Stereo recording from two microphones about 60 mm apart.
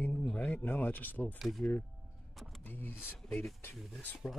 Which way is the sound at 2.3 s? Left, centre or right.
Centre.